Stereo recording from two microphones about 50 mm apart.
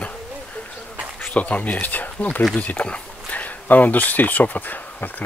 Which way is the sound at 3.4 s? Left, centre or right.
Left.